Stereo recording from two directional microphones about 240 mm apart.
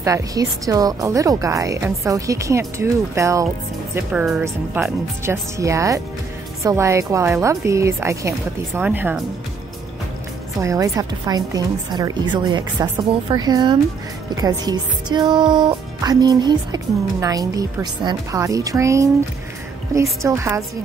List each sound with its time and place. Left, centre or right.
0.0 s speech: centre
10.6 s speech: centre
20.2 s speech: centre